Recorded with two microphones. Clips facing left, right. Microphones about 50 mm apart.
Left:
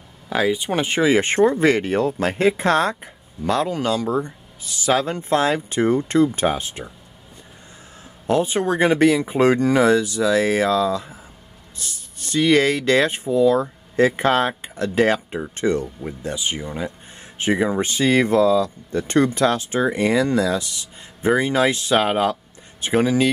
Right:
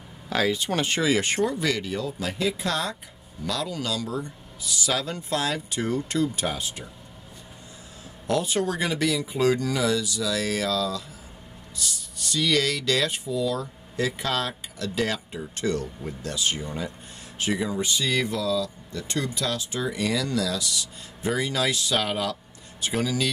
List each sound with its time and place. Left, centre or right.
0.3 s speech: centre
8.3 s speech: left